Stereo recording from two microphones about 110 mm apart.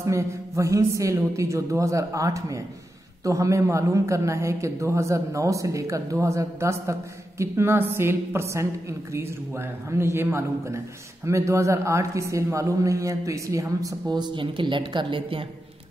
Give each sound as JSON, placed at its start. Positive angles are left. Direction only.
{"t": 0.0, "sound": "a man's voice", "side_deg": -25}